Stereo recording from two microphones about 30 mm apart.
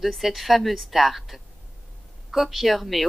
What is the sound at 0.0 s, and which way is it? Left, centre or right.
Speech, centre.